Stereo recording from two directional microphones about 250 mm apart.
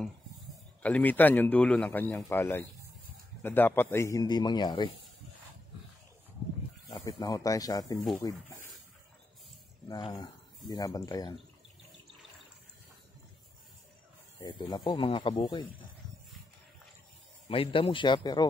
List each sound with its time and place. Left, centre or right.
0.8 s speech: centre
6.9 s speech: centre
9.8 s speech: centre
14.4 s speech: centre
17.5 s speech: left